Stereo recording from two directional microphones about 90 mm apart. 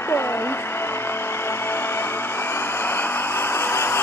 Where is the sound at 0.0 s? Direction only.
30° left (ahead or behind).